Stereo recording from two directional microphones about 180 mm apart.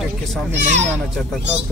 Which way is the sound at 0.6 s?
40° right (ahead or behind).